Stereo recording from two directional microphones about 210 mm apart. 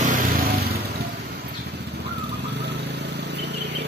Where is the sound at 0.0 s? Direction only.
40° right (ahead or behind).